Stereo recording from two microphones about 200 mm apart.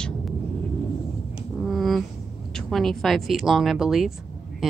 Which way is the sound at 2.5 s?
Centre (ahead or behind).